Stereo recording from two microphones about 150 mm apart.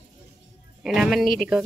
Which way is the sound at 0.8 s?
5° right (ahead or behind).